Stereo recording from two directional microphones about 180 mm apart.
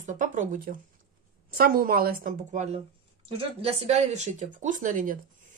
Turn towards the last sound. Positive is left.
turn(degrees=-45)  # may be behind; listen again after turning